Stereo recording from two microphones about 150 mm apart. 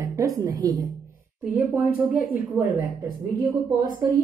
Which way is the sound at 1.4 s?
10° right (ahead or behind).